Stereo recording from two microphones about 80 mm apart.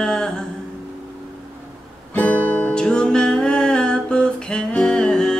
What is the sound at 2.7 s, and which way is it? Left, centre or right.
Music, centre.